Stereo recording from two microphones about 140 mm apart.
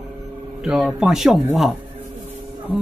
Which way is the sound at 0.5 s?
5° right (ahead or behind).